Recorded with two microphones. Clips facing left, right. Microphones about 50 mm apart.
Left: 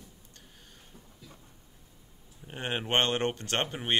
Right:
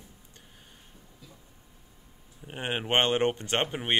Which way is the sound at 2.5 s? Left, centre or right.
Centre.